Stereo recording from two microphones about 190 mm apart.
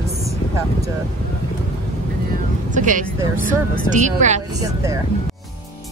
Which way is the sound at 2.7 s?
40° right (ahead or behind).